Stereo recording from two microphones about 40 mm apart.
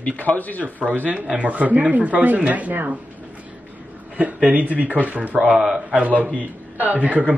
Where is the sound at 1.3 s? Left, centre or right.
Right.